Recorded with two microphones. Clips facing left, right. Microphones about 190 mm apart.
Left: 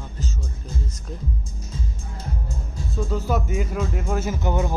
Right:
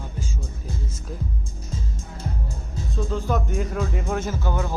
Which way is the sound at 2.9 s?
5° left (ahead or behind).